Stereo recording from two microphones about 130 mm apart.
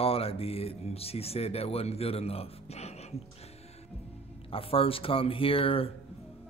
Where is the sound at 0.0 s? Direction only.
50° left (ahead or behind).